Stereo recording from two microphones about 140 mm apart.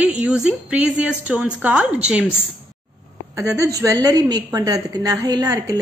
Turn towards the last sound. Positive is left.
turn(degrees=-25)  # may be behind; listen again after turning